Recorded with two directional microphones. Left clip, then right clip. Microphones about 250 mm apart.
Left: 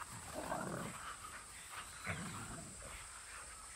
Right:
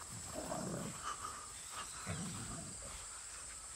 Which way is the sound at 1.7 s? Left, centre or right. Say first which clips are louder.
Left 1 dB; centre.